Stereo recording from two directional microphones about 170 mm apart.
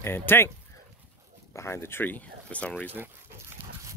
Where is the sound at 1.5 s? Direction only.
15° left (ahead or behind).